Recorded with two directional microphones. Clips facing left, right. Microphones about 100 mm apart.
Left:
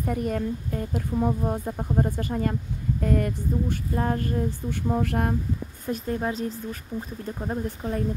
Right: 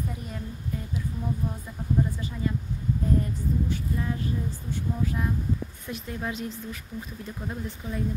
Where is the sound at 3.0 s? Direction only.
75° left (ahead or behind).